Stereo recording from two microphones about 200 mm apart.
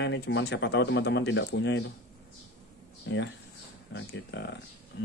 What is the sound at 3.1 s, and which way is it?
Speech, 65° left (ahead or behind).